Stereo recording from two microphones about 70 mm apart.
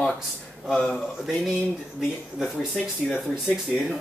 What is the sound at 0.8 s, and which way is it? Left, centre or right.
Speech, centre.